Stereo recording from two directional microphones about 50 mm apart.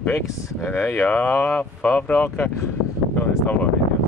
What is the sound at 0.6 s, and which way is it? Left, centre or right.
Speech, left.